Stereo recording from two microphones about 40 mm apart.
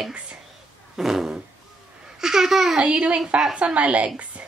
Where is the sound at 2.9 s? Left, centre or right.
Right.